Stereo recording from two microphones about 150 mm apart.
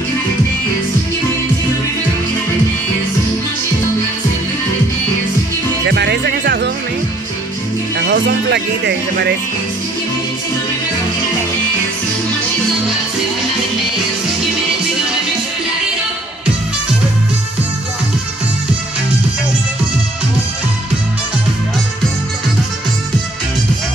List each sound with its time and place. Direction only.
5.9 s music: 90° right
8.0 s speech: 90° right